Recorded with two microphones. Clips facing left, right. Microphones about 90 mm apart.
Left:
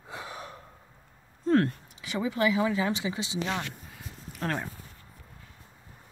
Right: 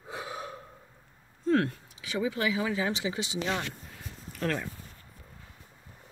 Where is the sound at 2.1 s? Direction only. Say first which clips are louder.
Left 3 dB; 35° left (ahead or behind).